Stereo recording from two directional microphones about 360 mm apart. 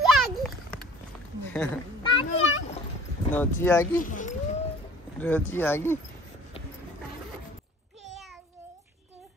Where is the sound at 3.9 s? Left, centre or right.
Left.